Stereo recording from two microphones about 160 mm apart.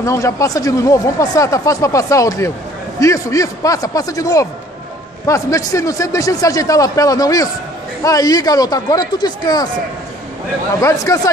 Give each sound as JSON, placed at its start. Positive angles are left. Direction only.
{"t": 0.0, "sound": "speech", "side_deg": 20}
{"t": 10.8, "sound": "speech", "side_deg": 20}